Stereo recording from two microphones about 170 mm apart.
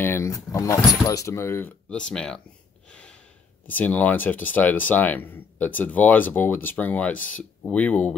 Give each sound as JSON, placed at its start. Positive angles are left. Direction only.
{"t": 0.0, "sound": "speech", "side_deg": 15}
{"t": 2.9, "sound": "gasp", "side_deg": 5}
{"t": 3.6, "sound": "speech", "side_deg": 10}